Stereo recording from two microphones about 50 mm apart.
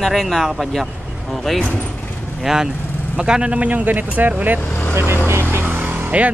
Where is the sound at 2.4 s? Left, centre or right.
Centre; by 4.6 s right.